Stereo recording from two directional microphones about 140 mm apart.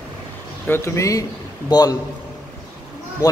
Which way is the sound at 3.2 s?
25° left (ahead or behind).